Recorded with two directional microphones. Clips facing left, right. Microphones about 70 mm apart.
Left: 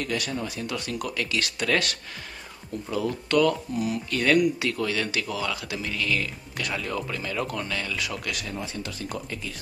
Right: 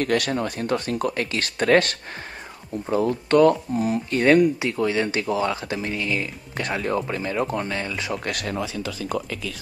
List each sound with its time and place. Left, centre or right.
0.0 s speech: right
8.3 s speech: right